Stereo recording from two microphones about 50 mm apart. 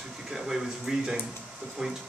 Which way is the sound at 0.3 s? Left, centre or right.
Centre.